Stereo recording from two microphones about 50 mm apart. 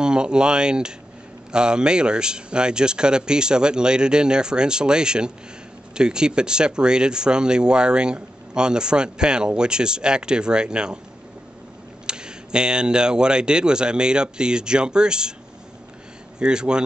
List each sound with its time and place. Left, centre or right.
0.0 s speech: centre
12.1 s speech: centre
16.3 s speech: centre